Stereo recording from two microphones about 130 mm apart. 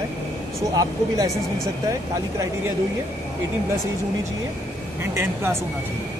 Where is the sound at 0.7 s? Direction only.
25° right (ahead or behind).